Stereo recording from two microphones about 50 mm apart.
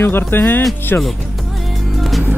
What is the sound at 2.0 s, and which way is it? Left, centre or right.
Music, centre.